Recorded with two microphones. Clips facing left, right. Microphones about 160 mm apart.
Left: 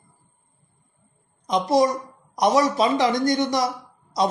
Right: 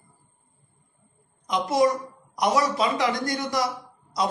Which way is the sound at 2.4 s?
25° left (ahead or behind).